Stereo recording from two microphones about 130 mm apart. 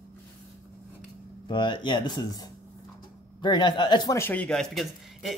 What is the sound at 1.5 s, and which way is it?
Speech, 35° left (ahead or behind).